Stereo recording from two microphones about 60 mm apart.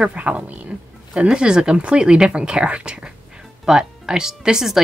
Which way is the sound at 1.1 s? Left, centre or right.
Centre.